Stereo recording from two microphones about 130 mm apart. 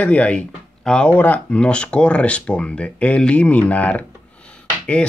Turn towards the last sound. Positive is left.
turn(degrees=10)  # may be behind; listen again after turning